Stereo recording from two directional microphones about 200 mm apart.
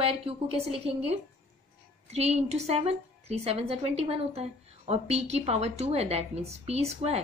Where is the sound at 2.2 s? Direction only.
35° right (ahead or behind).